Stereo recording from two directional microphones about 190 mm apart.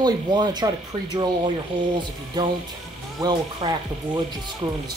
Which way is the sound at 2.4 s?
20° right (ahead or behind).